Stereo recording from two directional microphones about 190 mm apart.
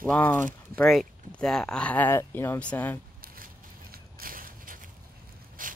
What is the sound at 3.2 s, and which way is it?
Crushing, 50° right (ahead or behind).